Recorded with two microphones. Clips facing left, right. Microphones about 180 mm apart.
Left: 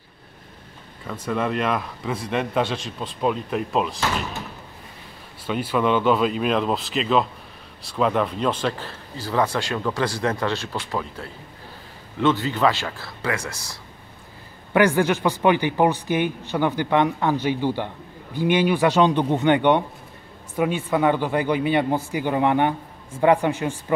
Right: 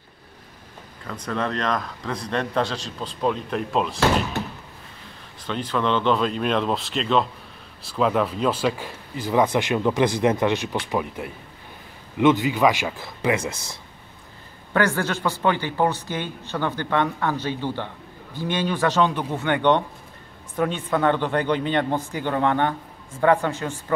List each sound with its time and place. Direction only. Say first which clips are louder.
1.2 s a man's voice: left 2 dB; 10° left (ahead or behind)
5.5 s a man's voice: left 2 dB; 10° left (ahead or behind); by 13.7 s 20° right (ahead or behind)
14.7 s speech: left 4 dB; 15° left (ahead or behind)